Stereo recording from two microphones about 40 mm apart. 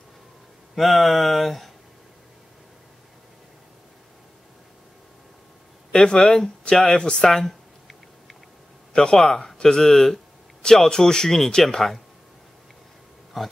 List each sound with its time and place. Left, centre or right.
0.7 s speech: centre
5.9 s speech: centre
8.9 s speech: centre
13.4 s speech: centre